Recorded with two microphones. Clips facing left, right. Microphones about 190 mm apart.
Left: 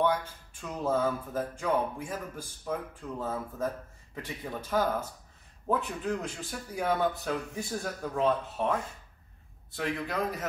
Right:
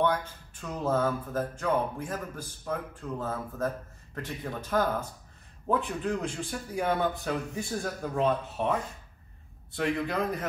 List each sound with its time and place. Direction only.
0.0 s a man's voice: 10° left (ahead or behind)